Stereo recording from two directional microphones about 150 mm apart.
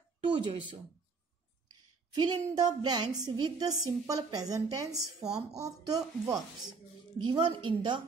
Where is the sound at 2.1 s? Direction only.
25° right (ahead or behind).